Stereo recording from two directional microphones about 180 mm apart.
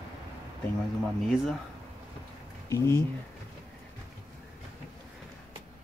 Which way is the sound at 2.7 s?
15° left (ahead or behind).